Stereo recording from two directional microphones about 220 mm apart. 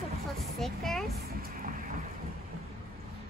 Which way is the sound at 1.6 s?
40° right (ahead or behind).